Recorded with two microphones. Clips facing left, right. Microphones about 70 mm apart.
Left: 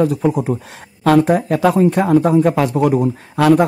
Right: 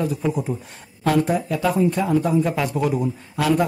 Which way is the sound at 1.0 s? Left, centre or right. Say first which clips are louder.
Left 7 dB; left.